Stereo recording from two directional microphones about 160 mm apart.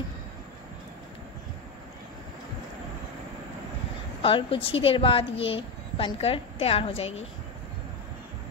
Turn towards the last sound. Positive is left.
turn(degrees=40)  # may be behind; listen again after turning